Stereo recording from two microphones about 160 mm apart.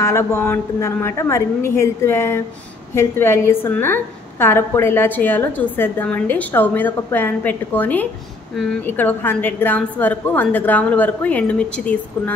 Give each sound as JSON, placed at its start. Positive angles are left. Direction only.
{"t": 0.0, "sound": "a woman's voice", "side_deg": 15}